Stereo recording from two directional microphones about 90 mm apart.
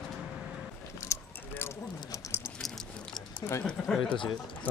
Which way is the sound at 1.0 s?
35° left (ahead or behind).